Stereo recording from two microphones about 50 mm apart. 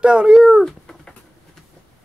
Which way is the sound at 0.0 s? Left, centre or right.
Centre.